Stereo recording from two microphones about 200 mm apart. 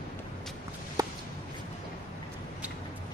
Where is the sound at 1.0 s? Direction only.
15° right (ahead or behind).